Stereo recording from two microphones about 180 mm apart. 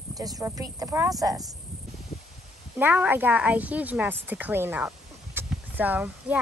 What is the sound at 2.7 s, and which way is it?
A woman's voice, 10° right (ahead or behind).